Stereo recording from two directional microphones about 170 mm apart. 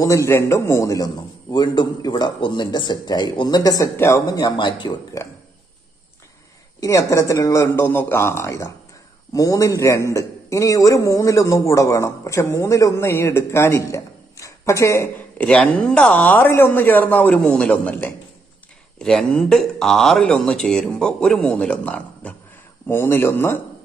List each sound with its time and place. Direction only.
0.0 s a man's voice: 20° left (ahead or behind)
6.8 s a man's voice: 20° left (ahead or behind)